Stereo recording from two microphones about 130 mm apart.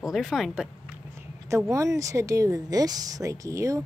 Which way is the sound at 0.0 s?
Centre (ahead or behind).